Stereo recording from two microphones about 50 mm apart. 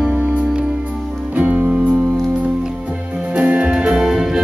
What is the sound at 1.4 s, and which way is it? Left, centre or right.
Music, right.